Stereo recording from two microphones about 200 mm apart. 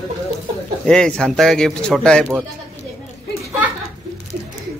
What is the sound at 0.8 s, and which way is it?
A man's voice, 5° left (ahead or behind).